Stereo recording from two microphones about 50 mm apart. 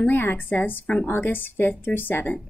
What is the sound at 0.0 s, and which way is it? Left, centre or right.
A woman's voice, left.